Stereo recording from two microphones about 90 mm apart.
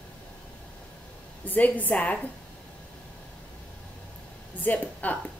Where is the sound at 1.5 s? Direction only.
20° left (ahead or behind).